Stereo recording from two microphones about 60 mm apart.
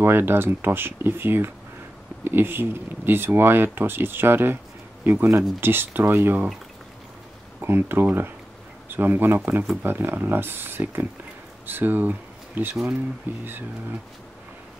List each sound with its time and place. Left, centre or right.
0.0 s speech: right
7.6 s speech: right